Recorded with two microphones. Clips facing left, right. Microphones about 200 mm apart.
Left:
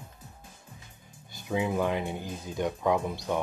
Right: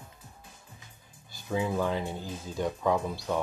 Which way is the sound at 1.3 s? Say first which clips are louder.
Left 1 dB; 20° left (ahead or behind).